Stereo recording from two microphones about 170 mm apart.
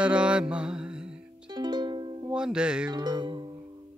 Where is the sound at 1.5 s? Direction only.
25° right (ahead or behind).